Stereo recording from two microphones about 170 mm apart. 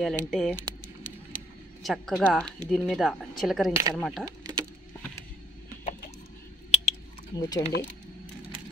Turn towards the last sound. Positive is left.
turn(degrees=20)  # may be behind; listen again after turning